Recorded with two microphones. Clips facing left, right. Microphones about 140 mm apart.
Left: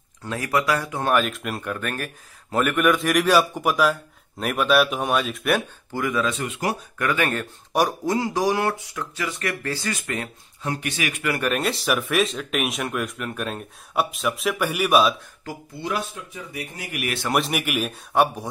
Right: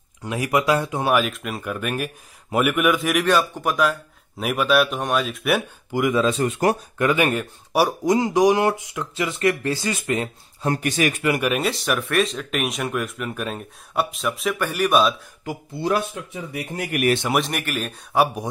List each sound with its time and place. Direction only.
0.2 s speech: 15° right (ahead or behind)
1.0 s speech: 5° right (ahead or behind)
5.9 s speech: 15° right (ahead or behind)
6.2 s speech: 35° right (ahead or behind)
7.0 s speech: 20° right (ahead or behind)
10.6 s speech: 45° right (ahead or behind)
11.2 s speech: 15° right (ahead or behind)
11.5 s speech: centre (ahead or behind)
15.5 s speech: 20° right (ahead or behind)
16.7 s speech: 55° right (ahead or behind)
17.3 s speech: 5° left (ahead or behind)
18.1 s speech: 5° right (ahead or behind)